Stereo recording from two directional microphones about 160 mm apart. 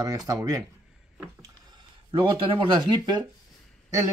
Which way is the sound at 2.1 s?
30° right (ahead or behind).